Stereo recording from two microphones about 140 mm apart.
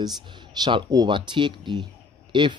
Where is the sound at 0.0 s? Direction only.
30° right (ahead or behind).